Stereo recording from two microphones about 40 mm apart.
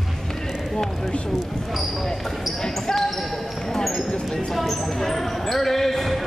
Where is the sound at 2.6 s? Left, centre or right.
Centre.